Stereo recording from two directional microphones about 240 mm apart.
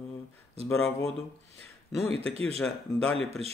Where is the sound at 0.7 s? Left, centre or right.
Centre.